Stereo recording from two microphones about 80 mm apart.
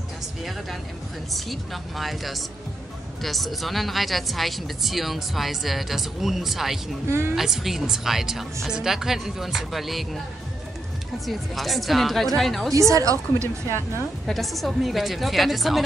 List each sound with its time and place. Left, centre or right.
0.4 s a woman's voice: centre
7.1 s a woman's voice: right
7.3 s a woman's voice: centre
11.2 s a woman's voice: centre
12.7 s a woman's voice: right
14.2 s a woman's voice: centre